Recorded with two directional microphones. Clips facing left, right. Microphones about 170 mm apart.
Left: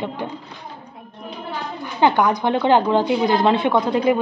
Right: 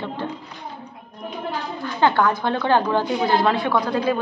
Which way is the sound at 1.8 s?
15° left (ahead or behind).